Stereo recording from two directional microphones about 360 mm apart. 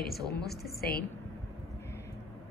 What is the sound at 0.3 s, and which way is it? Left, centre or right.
Speech, left.